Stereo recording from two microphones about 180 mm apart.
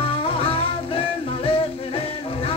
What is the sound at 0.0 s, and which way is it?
Music, 30° left (ahead or behind).